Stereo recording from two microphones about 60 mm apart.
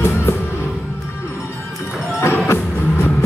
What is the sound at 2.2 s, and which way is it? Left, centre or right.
Music, left.